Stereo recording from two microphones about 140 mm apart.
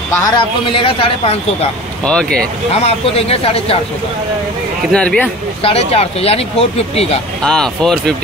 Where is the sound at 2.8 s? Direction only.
45° left (ahead or behind).